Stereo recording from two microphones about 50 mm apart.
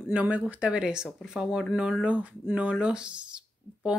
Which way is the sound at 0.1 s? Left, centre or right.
Right.